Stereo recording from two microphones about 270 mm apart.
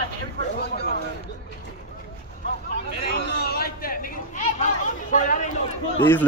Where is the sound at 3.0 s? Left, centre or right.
Left.